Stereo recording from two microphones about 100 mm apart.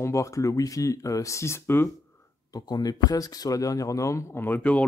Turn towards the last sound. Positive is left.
turn(degrees=15)  # may be behind; listen again after turning